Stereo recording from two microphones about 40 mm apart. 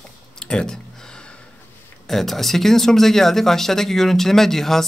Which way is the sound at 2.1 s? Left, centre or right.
Centre.